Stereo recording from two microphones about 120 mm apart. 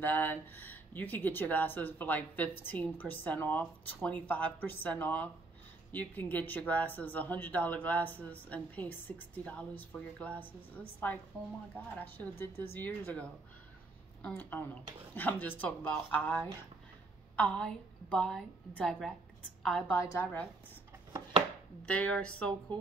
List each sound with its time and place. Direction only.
0.0 s speech: 15° left (ahead or behind)
11.7 s speech: 15° left (ahead or behind)
19.9 s speech: 15° left (ahead or behind)
21.8 s speech: 10° left (ahead or behind)